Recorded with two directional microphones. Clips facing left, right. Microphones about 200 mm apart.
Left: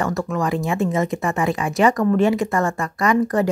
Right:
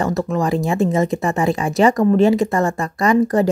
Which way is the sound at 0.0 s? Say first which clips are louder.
Right 3 dB; 25° right (ahead or behind).